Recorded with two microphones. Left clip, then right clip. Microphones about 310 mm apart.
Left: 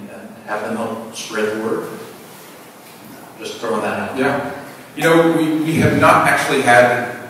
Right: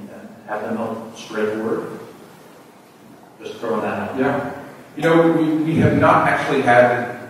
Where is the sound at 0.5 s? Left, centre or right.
Centre.